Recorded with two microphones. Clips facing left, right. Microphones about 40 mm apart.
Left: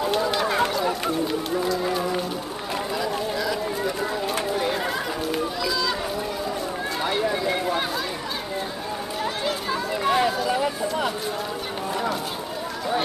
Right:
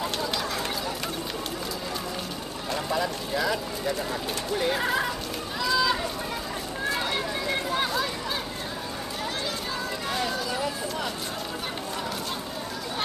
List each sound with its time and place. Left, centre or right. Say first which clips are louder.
0.0 s a sound: left 6 dB; centre
0.4 s fowl: left 8 dB; left
1.6 s speech: left 9 dB; centre
2.9 s speech: left 1 dB; centre
4.6 s speech: left 1 dB; centre
5.6 s run: right 1 dB; centre
7.0 s run: left 4 dB; centre
7.5 s speech: left 2 dB; centre
9.2 s a sound: left 5 dB; left
10.3 s speech: left 5 dB; centre